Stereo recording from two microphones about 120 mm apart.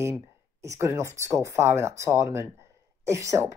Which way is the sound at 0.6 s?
25° right (ahead or behind).